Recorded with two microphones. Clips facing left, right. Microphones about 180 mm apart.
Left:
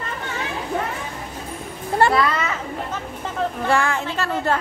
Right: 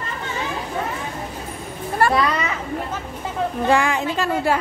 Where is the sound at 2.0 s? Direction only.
25° left (ahead or behind).